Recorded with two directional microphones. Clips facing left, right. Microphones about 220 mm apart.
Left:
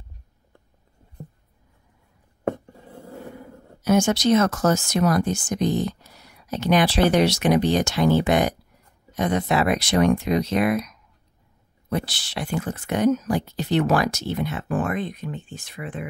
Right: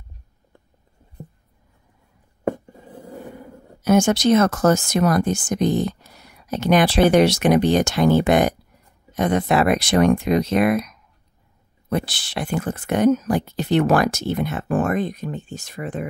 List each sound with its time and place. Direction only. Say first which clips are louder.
2.4 s writing: right 2 dB; 10° right (ahead or behind)
3.8 s speech: right 3 dB; 55° right (ahead or behind)
11.9 s speech: right 3 dB; 55° right (ahead or behind)